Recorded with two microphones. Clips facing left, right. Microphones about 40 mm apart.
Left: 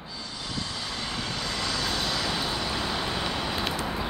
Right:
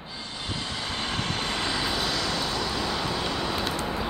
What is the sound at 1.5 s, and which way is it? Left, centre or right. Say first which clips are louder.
Vehicle: even; right.